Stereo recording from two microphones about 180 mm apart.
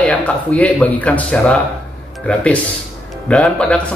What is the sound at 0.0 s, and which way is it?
Speech, 10° left (ahead or behind).